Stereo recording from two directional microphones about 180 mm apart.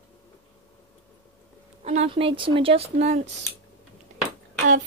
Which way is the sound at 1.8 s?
35° right (ahead or behind).